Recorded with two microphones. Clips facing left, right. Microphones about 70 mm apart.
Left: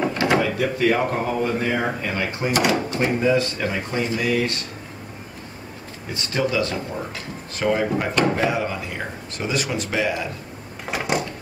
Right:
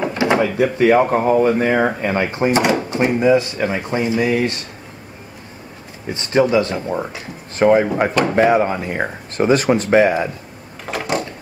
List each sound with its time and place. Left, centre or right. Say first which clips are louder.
0.1 s speech: right 3 dB; right
6.1 s speech: right 8 dB; right
10.9 s a sound: right 2 dB; centre